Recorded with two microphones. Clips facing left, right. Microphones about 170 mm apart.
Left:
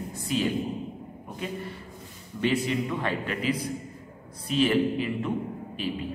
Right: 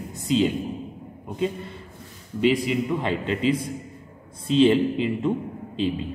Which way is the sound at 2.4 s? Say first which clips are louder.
Right 4 dB; 15° right (ahead or behind).